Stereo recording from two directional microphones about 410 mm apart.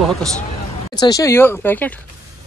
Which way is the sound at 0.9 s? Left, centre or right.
Centre.